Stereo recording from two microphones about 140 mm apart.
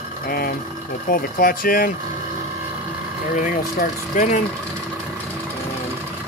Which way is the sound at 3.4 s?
65° left (ahead or behind).